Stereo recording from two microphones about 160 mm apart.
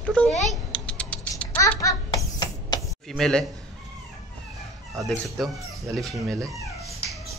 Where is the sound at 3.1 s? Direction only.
5° left (ahead or behind).